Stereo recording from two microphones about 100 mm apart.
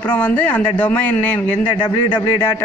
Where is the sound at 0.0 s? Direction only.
20° left (ahead or behind).